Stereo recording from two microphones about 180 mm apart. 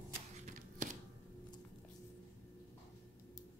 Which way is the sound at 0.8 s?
45° right (ahead or behind).